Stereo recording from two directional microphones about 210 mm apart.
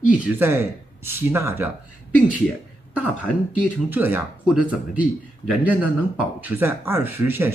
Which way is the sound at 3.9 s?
10° right (ahead or behind).